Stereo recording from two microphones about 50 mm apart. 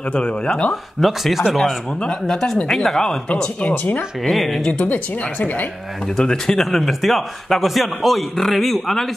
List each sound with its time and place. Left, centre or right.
0.1 s speech: left
1.0 s a man's voice: centre
3.6 s speech: left
4.2 s a man's voice: centre
4.7 s speech: left
6.1 s a man's voice: centre